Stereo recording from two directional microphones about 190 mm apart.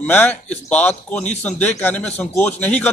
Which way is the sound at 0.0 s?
10° left (ahead or behind).